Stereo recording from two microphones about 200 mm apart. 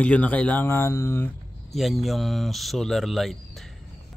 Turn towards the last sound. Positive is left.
turn(degrees=0)  # may be behind; listen again after turning